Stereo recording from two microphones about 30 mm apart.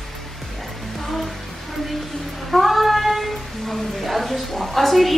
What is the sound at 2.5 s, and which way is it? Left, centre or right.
A woman's voice, centre.